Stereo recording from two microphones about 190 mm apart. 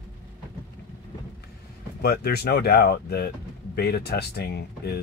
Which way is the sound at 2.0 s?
55° left (ahead or behind).